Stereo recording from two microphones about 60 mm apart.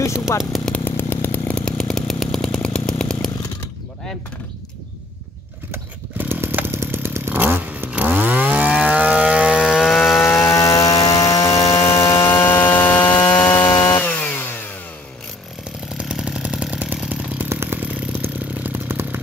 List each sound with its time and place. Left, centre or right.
0.8 s chainsaw: left
1.5 s chainsaw: centre
5.7 s chainsaw: right
7.3 s vehicle: right
7.9 s chainsaw: right
9.9 s chainsaw: centre
10.2 s chainsaw: left
10.6 s chainsaw: left
12.4 s chainsaw: left
16.0 s chainsaw: centre
17.5 s engine: right
17.7 s chainsaw: right